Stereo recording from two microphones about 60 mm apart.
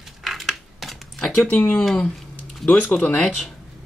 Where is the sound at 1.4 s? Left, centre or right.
Left.